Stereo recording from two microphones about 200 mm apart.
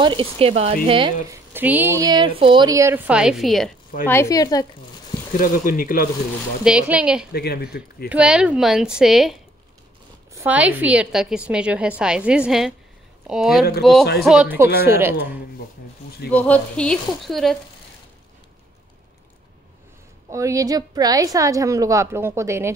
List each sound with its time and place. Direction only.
0.0 s speech: 25° right (ahead or behind)
1.5 s a woman's voice: 10° right (ahead or behind)
4.1 s speech: 15° left (ahead or behind)
5.4 s speech: 45° left (ahead or behind)
6.6 s a woman's voice: 5° right (ahead or behind)
7.3 s speech: 50° left (ahead or behind)
8.1 s a woman's voice: 5° right (ahead or behind)
16.3 s a woman's voice: 5° left (ahead or behind)
20.2 s a woman's voice: 15° right (ahead or behind)